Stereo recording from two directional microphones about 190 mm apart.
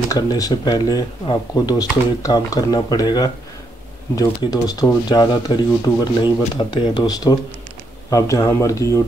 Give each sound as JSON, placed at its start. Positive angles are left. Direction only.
{"t": 0.1, "sound": "speech", "side_deg": 20}